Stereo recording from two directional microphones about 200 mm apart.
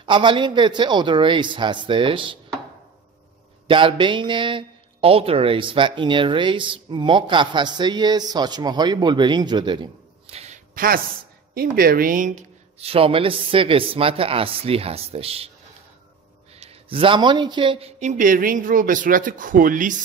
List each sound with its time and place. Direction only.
0.0 s speech: 25° right (ahead or behind)
3.6 s speech: 25° right (ahead or behind)
16.5 s a man's voice: 30° right (ahead or behind)